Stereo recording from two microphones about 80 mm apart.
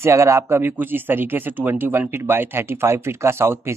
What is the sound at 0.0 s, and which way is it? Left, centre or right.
Speech, right.